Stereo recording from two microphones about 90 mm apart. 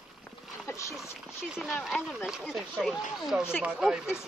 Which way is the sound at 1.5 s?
Centre (ahead or behind).